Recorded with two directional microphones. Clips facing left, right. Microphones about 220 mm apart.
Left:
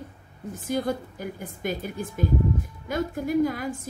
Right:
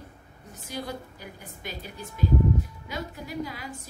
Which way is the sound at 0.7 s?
50° left (ahead or behind).